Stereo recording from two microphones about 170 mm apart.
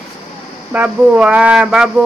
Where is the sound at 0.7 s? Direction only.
10° right (ahead or behind).